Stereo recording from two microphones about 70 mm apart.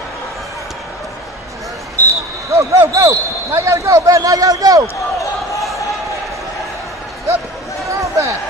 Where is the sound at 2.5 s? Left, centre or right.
Right.